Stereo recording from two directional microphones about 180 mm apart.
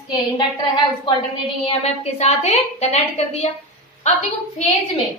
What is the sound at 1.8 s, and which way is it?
A woman's voice, 35° left (ahead or behind).